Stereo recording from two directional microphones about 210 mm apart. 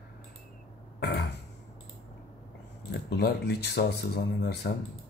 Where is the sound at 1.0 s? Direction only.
55° left (ahead or behind).